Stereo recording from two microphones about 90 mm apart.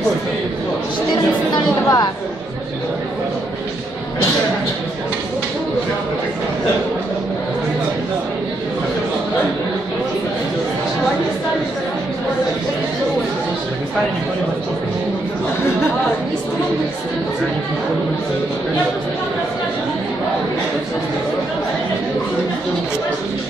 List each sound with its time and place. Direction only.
1.5 s speech: 50° left (ahead or behind)